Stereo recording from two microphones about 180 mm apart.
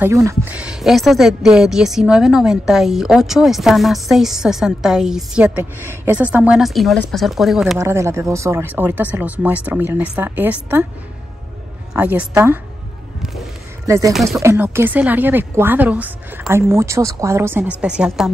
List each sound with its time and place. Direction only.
0.0 s a woman's voice: 15° right (ahead or behind)
7.8 s a woman's voice: 15° right (ahead or behind)
11.9 s a woman's voice: 10° right (ahead or behind)
13.8 s a woman's voice: 15° right (ahead or behind)
14.1 s a woman's voice: centre (ahead or behind)
14.4 s a woman's voice: 15° right (ahead or behind)